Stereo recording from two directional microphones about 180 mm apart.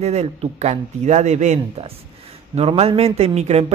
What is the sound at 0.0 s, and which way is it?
Speech, 35° right (ahead or behind).